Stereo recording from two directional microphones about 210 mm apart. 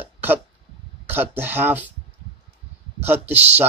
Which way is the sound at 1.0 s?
10° right (ahead or behind).